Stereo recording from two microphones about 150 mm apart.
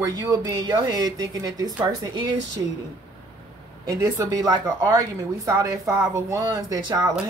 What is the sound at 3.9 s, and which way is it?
A woman's voice, 20° right (ahead or behind).